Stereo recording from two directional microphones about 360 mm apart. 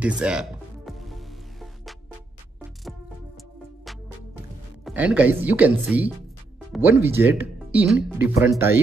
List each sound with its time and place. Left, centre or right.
0.0 s music: centre
4.8 s speech: centre